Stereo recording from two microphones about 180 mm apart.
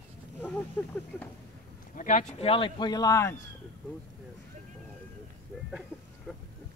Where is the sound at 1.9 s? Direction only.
45° left (ahead or behind); by 3.4 s 15° left (ahead or behind).